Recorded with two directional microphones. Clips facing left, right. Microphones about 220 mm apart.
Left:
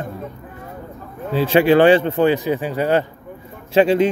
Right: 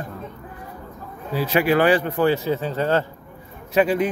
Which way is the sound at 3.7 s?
25° left (ahead or behind).